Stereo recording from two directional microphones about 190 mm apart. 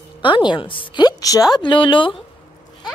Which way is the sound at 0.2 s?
25° left (ahead or behind).